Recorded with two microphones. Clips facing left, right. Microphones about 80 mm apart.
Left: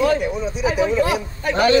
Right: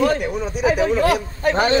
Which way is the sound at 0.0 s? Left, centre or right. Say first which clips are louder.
Left 1 dB; right.